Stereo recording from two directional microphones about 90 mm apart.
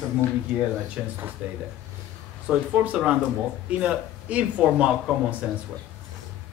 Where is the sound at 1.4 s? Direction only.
15° right (ahead or behind).